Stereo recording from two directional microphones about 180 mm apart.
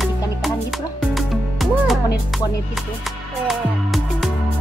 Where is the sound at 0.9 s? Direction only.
Centre (ahead or behind).